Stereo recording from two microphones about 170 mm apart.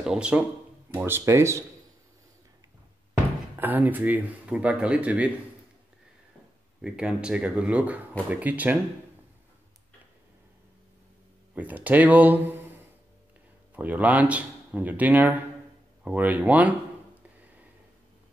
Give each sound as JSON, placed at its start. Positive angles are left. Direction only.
{"t": 0.0, "sound": "speech", "side_deg": -5}
{"t": 3.5, "sound": "speech", "side_deg": -10}
{"t": 6.8, "sound": "speech", "side_deg": -5}
{"t": 11.5, "sound": "a man's voice", "side_deg": -10}